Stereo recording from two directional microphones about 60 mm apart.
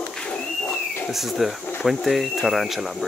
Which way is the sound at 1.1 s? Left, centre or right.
Centre.